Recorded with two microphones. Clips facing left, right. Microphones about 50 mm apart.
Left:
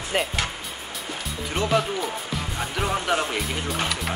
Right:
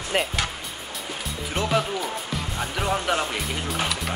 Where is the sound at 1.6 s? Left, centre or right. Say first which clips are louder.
Left 1 dB; centre.